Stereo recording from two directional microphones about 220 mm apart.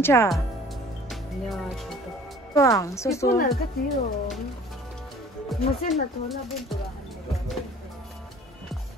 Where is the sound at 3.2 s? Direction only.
45° left (ahead or behind).